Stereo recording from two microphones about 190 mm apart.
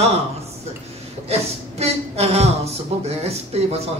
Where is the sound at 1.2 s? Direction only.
35° right (ahead or behind).